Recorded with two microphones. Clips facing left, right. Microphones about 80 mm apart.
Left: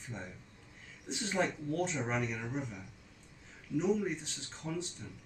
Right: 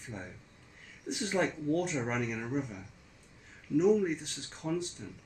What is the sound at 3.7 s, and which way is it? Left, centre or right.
Speech, centre.